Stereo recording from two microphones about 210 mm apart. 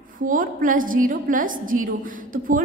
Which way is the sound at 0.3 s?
40° right (ahead or behind).